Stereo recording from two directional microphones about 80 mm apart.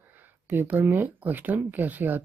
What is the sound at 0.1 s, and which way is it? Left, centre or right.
Speech, right.